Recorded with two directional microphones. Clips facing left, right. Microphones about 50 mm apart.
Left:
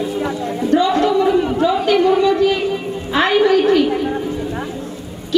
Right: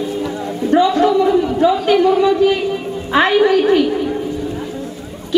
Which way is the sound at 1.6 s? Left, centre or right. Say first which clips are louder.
Right 5 dB; centre.